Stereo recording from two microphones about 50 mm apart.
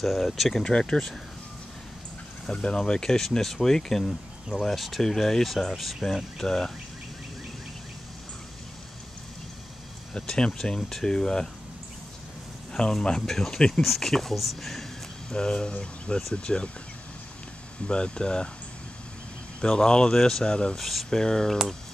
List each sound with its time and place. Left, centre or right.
0.0 s speech: centre
0.7 s speech: centre
2.5 s speech: centre
10.1 s speech: centre
12.7 s speech: centre
15.2 s speech: centre
17.8 s speech: centre
19.6 s speech: centre
21.1 s speech: centre